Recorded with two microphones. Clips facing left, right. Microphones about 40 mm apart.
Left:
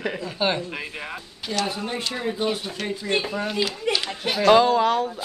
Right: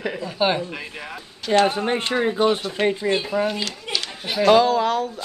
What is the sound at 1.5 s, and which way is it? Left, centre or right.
Speech, right.